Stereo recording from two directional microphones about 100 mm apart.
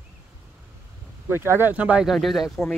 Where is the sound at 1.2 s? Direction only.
25° right (ahead or behind).